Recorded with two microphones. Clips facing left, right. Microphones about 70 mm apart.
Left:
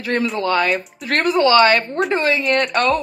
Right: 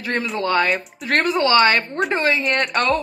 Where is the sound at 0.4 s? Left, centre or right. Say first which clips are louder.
Right 2 dB; right.